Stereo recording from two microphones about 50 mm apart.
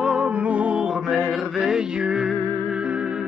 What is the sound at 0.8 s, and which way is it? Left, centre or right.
Music, centre.